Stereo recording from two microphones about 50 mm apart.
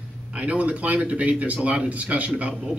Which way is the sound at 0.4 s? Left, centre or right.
Right.